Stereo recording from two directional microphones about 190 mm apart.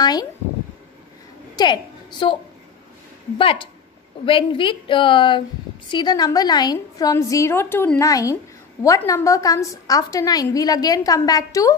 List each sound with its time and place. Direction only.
0.0 s a sound: 20° left (ahead or behind)
1.6 s a woman's voice: 25° left (ahead or behind)
3.3 s a woman's voice: 30° left (ahead or behind)